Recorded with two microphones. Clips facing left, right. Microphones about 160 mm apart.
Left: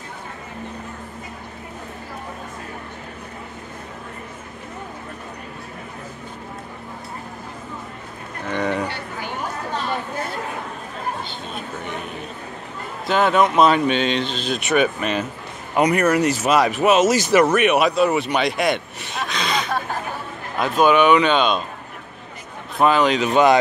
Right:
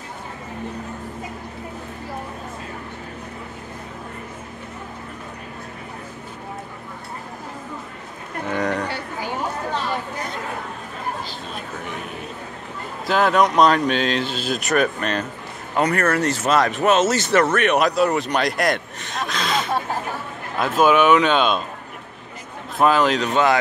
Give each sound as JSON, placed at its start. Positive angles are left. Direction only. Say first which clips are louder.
{"t": 8.5, "sound": "a sound", "louder": "even", "side_deg": 0}
{"t": 11.2, "sound": "chatter", "louder": "left 1 dB", "side_deg": 0}
{"t": 13.0, "sound": "speech", "louder": "even", "side_deg": 0}
{"t": 15.7, "sound": "speech", "louder": "left 3 dB", "side_deg": 15}
{"t": 22.8, "sound": "speech", "louder": "left 1 dB", "side_deg": 0}
{"t": 23.3, "sound": "speech", "louder": "left 5 dB", "side_deg": 15}